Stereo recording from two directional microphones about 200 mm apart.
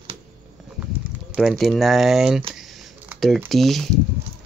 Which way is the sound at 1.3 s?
Centre (ahead or behind).